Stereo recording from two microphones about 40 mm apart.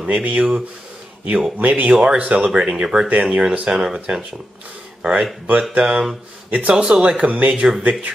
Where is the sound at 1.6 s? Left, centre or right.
Right.